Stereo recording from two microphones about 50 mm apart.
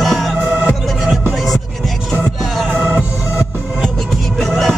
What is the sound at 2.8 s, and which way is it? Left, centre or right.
Organ, right.